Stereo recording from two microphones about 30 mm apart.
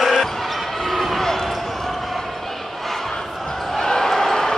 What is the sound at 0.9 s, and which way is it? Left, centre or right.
Basketball bounce, centre.